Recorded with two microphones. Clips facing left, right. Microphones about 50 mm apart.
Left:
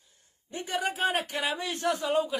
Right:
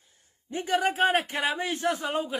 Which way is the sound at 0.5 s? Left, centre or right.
Right.